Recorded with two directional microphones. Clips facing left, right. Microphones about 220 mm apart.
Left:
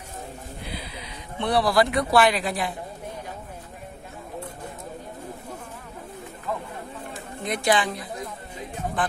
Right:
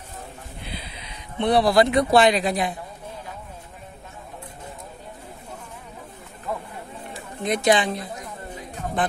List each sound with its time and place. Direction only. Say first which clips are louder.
0.7 s speech: left 2 dB; 20° right (ahead or behind)
7.4 s a woman's voice: right 3 dB; 20° right (ahead or behind)